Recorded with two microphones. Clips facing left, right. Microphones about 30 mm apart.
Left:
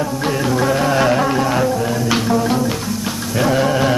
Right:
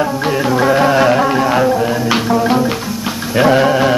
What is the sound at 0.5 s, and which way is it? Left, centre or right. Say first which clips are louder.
Music: right 5 dB; centre.